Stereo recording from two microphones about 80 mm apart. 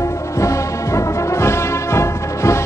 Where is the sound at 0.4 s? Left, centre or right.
Left.